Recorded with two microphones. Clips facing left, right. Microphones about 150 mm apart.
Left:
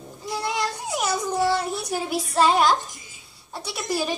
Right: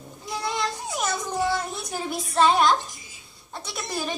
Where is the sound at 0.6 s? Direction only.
5° left (ahead or behind).